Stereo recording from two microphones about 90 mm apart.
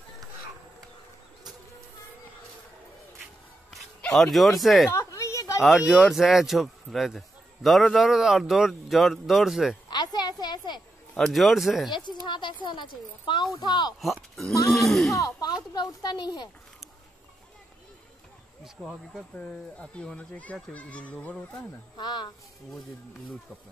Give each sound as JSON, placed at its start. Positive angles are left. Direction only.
{"t": 3.7, "sound": "speech", "side_deg": 5}
{"t": 4.9, "sound": "a sound", "side_deg": 35}
{"t": 5.6, "sound": "a man's voice", "side_deg": 0}
{"t": 9.8, "sound": "a sound", "side_deg": 50}
{"t": 11.1, "sound": "a man's voice", "side_deg": 0}
{"t": 11.9, "sound": "speech", "side_deg": 60}
{"t": 12.3, "sound": "a sound", "side_deg": 65}
{"t": 12.6, "sound": "speech", "side_deg": 60}
{"t": 14.0, "sound": "a man's voice", "side_deg": 0}
{"t": 15.1, "sound": "speech", "side_deg": 40}
{"t": 15.7, "sound": "speech", "side_deg": 55}
{"t": 18.6, "sound": "speech", "side_deg": -5}
{"t": 19.3, "sound": "a child's voice", "side_deg": 10}
{"t": 21.9, "sound": "speech", "side_deg": 55}